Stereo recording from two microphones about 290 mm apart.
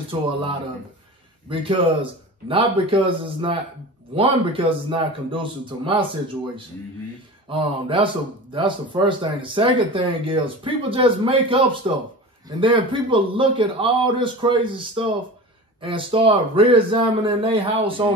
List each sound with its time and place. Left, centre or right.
1.5 s speech: centre
7.4 s speech: centre